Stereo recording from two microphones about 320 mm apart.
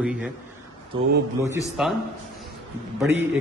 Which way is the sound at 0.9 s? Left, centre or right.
Centre.